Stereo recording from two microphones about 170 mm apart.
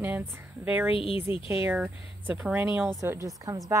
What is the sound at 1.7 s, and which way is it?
A woman's voice, 5° right (ahead or behind).